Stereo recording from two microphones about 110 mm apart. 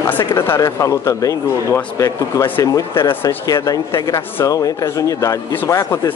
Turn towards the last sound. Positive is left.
turn(degrees=30)  # may be behind; listen again after turning